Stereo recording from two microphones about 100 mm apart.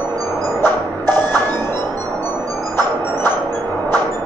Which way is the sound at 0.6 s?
20° left (ahead or behind).